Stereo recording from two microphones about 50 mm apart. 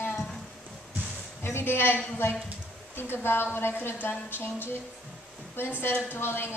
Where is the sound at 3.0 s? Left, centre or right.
Left.